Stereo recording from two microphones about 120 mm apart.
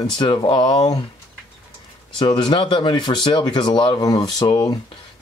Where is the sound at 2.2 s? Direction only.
40° left (ahead or behind).